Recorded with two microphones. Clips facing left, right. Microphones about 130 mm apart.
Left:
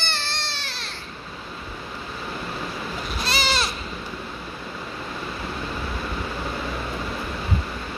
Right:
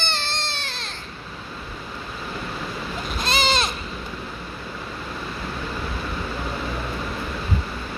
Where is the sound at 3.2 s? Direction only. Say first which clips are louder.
Right 3 dB; 20° right (ahead or behind).